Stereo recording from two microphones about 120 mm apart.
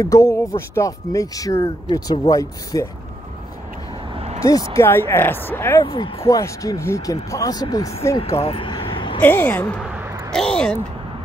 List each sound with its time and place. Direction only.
0.0 s speech: 25° left (ahead or behind)
4.1 s a sound: 60° right (ahead or behind)
4.4 s speech: 25° left (ahead or behind)
5.9 s speech: 50° left (ahead or behind)
6.2 s speech: 30° left (ahead or behind)
8.4 s vehicle: 50° left (ahead or behind)
9.2 s speech: 15° left (ahead or behind)
9.8 s a sound: 15° right (ahead or behind)
10.3 s speech: 5° left (ahead or behind)